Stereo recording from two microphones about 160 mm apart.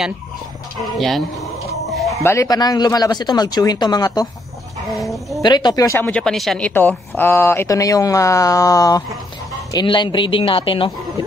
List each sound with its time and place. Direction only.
0.9 s speech: centre (ahead or behind)
1.9 s bow-wow: centre (ahead or behind)
2.2 s speech: 20° left (ahead or behind)
5.0 s speech: centre (ahead or behind)
5.4 s speech: 25° left (ahead or behind); by 6.7 s centre (ahead or behind)
6.7 s speech: 10° left (ahead or behind); by 10.9 s 35° left (ahead or behind)